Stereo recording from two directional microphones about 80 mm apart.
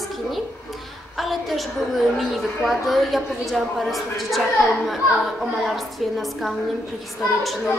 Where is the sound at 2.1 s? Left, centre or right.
Centre.